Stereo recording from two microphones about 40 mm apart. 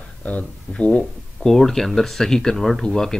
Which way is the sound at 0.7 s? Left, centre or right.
Left.